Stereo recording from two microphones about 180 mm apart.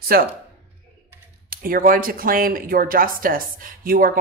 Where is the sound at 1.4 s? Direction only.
50° right (ahead or behind).